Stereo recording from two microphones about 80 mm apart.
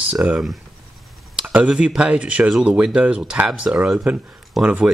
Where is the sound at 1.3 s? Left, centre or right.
Centre.